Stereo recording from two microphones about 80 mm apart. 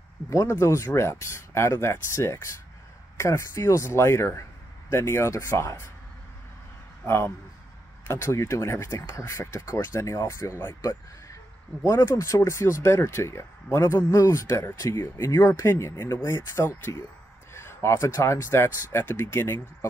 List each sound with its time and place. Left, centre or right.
0.3 s speech: left
7.1 s speech: left